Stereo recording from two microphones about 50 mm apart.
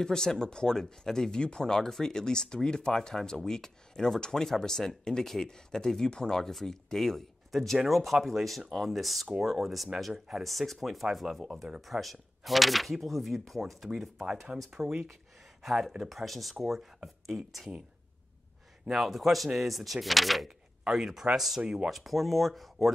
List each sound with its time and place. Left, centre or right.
0.0 s speech: centre
10.4 s speech: centre
14.7 s speech: centre
18.9 s speech: centre
20.8 s speech: centre
21.9 s speech: centre